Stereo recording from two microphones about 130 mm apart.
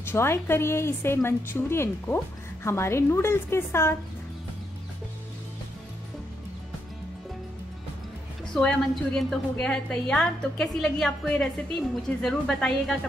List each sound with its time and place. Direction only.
0.0 s a woman's voice: 20° left (ahead or behind)
8.5 s a woman's voice: 5° left (ahead or behind)